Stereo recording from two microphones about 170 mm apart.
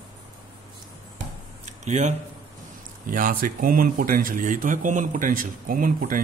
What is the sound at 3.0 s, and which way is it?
Speech, 55° right (ahead or behind).